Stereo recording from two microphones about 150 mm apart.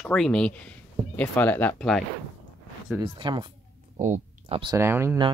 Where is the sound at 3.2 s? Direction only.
35° right (ahead or behind).